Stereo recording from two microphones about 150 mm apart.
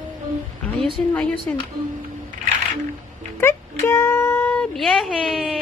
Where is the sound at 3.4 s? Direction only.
20° left (ahead or behind).